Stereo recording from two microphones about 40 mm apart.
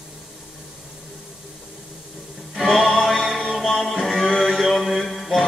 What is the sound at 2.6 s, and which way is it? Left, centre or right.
Music, centre.